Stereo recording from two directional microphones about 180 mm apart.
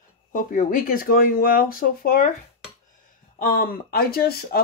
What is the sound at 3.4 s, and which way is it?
Speech, 55° left (ahead or behind).